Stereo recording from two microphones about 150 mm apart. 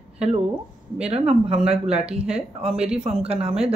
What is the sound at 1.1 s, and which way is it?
Speech, 45° right (ahead or behind).